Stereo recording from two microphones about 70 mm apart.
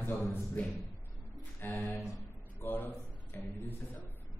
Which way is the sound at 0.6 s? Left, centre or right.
Left.